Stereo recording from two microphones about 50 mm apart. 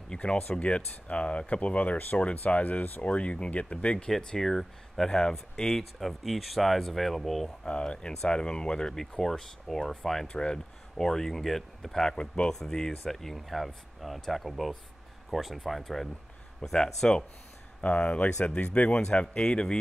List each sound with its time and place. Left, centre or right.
0.5 s speech: left
3.1 s speech: left; by 7.5 s centre
7.6 s speech: left; by 10.3 s centre
10.3 s speech: centre
11.0 s speech: centre
17.8 s speech: left
18.9 s speech: centre